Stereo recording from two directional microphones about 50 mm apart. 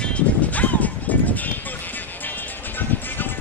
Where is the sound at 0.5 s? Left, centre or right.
Left.